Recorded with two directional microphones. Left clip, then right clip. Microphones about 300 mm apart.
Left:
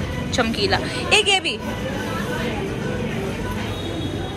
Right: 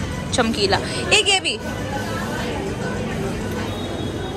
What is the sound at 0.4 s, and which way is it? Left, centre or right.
Speech, centre.